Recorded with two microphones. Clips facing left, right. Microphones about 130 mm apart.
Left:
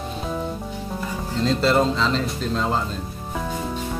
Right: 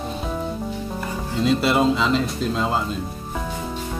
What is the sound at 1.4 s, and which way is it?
Speech, 10° right (ahead or behind).